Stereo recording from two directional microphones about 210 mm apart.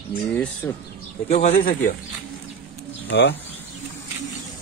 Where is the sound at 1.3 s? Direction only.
35° left (ahead or behind).